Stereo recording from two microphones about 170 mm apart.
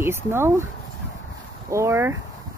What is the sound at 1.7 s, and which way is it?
Speech, 15° right (ahead or behind).